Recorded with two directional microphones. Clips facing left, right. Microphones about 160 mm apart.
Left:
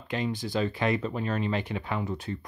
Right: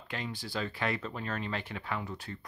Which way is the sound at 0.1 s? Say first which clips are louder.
Left 8 dB; 20° left (ahead or behind).